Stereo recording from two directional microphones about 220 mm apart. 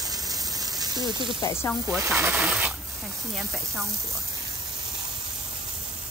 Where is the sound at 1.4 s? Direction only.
10° left (ahead or behind).